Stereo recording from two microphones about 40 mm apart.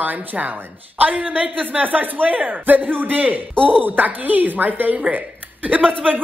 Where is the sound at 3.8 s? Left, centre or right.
Right.